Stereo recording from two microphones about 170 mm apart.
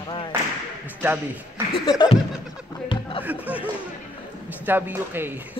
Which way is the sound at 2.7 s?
30° left (ahead or behind).